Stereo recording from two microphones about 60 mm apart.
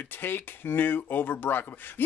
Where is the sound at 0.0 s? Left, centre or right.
Left.